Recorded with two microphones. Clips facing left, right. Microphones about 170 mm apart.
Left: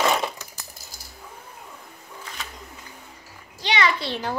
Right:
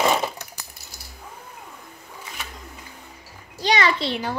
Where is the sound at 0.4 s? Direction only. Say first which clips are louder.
Right 2 dB; 65° right (ahead or behind).